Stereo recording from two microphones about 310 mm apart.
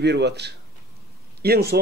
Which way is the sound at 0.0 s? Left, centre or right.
Right.